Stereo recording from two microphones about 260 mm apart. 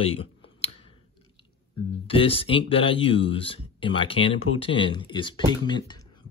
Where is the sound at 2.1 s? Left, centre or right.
Left.